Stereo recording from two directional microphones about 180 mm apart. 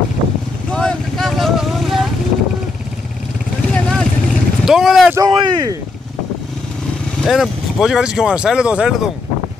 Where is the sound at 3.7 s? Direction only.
5° left (ahead or behind).